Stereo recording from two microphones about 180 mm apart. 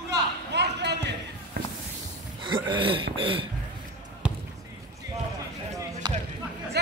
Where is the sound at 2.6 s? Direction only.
25° right (ahead or behind).